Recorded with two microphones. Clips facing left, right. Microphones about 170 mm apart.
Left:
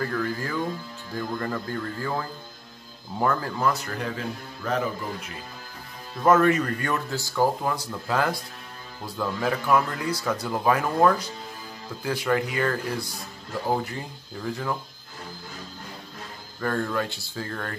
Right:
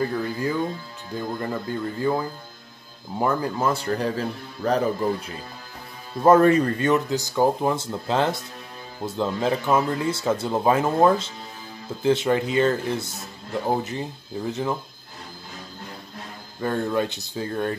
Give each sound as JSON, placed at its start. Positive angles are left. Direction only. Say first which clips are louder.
{"t": 0.0, "sound": "speech", "louder": "right 3 dB", "side_deg": -20}
{"t": 6.2, "sound": "speech", "louder": "right 4 dB", "side_deg": -30}
{"t": 16.6, "sound": "speech", "louder": "right 3 dB", "side_deg": -20}